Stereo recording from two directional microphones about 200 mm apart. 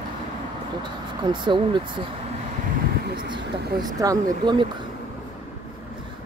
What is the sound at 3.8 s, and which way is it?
Speech, 20° right (ahead or behind).